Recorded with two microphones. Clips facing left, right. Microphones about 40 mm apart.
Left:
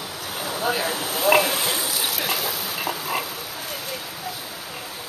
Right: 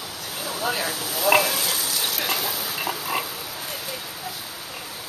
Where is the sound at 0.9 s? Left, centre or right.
Left.